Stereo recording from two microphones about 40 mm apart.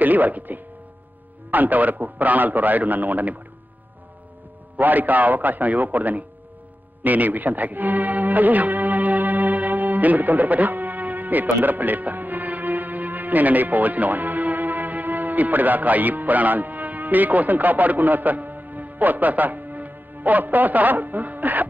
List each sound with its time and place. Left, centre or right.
0.0 s a man's voice: right
4.7 s a man's voice: right